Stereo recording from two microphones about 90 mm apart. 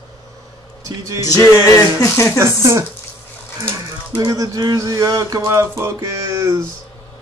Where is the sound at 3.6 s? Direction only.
30° right (ahead or behind).